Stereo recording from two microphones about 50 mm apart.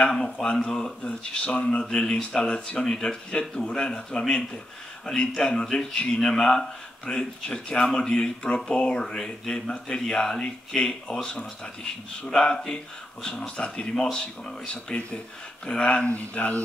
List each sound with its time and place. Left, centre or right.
0.0 s speech: centre
12.3 s speech: centre
15.6 s speech: left